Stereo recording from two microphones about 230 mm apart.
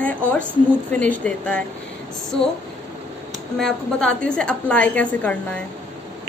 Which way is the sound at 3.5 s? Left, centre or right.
Centre.